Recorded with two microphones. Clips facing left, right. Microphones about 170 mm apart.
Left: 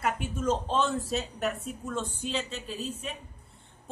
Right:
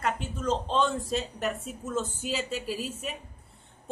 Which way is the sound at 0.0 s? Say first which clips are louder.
Left 1 dB; 10° left (ahead or behind).